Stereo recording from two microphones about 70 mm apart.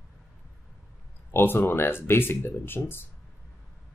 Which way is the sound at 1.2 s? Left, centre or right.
Left.